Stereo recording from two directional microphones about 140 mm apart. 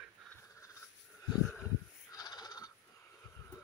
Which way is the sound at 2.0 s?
25° left (ahead or behind).